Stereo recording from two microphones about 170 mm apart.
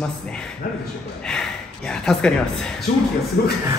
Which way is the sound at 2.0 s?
5° left (ahead or behind).